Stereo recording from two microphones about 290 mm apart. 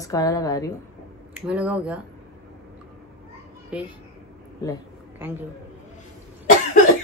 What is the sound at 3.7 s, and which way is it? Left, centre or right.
Speech, centre.